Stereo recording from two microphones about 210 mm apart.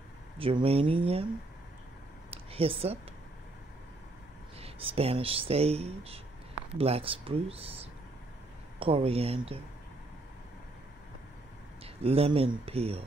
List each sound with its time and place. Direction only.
0.4 s speech: 25° right (ahead or behind)
2.3 s a sound: 25° right (ahead or behind)
4.6 s speech: 25° right (ahead or behind)
11.8 s speech: 25° right (ahead or behind)